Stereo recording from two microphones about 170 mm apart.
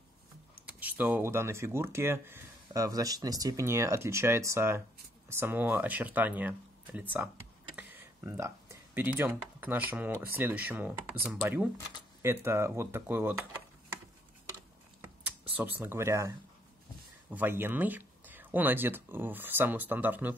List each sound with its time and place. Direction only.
0.7 s speech: 10° right (ahead or behind)
15.0 s computer keyboard: 10° right (ahead or behind)
17.3 s speech: 10° right (ahead or behind)